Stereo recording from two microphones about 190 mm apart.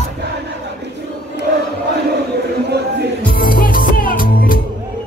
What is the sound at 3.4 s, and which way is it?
Music, 50° left (ahead or behind).